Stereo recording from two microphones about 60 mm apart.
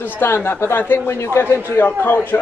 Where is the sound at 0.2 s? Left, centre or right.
Left.